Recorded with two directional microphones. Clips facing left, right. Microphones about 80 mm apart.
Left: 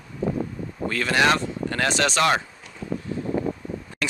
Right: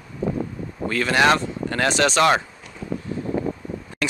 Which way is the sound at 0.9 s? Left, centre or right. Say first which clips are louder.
Right 3 dB; right.